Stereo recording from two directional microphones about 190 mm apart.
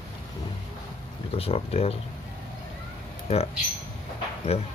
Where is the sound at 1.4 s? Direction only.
30° left (ahead or behind).